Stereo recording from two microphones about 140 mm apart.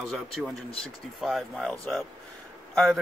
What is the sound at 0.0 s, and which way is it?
Speech, centre (ahead or behind).